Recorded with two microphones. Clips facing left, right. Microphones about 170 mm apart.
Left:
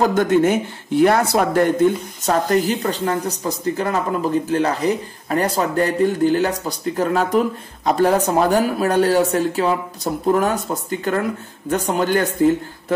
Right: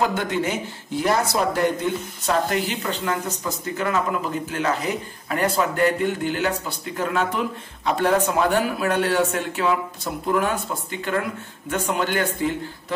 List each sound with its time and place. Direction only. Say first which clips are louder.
0.0 s speech: left 7 dB; 45° left (ahead or behind)